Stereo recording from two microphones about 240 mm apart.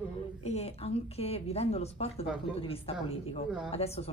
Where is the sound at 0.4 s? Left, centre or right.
Left.